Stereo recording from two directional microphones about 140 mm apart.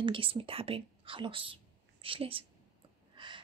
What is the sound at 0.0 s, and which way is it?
A woman's voice, 40° right (ahead or behind).